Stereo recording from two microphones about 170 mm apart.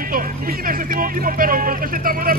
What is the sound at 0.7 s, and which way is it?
Speech, 55° right (ahead or behind).